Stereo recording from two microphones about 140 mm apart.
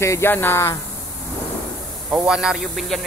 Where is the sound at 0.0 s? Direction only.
20° left (ahead or behind).